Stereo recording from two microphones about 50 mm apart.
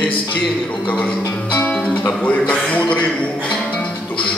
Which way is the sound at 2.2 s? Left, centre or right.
Left.